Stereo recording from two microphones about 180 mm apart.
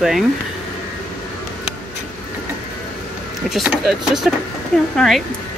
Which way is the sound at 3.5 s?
5° right (ahead or behind).